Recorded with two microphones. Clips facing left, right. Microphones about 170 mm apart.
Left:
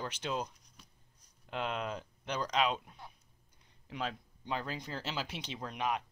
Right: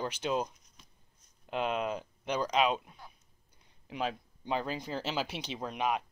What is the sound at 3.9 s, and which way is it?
Speech, 15° right (ahead or behind).